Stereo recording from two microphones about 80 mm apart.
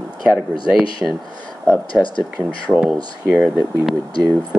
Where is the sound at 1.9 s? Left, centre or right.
Left.